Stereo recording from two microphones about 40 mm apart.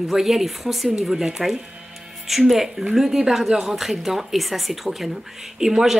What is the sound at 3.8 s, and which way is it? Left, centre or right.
Speech, centre.